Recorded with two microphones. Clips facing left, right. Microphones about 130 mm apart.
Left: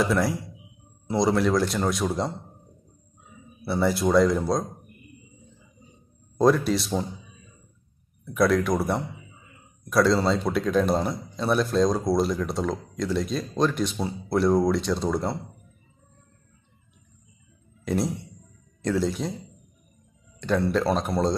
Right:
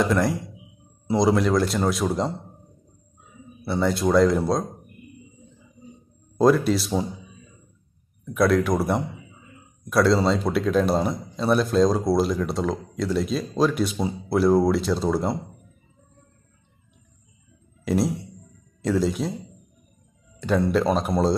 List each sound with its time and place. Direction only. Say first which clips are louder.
0.0 s speech: right 2 dB; centre (ahead or behind)
3.6 s speech: right 1 dB; 5° left (ahead or behind)
6.3 s speech: right 2 dB; centre (ahead or behind)
8.4 s speech: right 2 dB; centre (ahead or behind)
17.8 s a sound: right 3 dB; centre (ahead or behind)
18.8 s speech: right 2 dB; centre (ahead or behind)
20.3 s a sound: right 2 dB; 5° right (ahead or behind)
20.7 s speech: right 2 dB; 5° right (ahead or behind)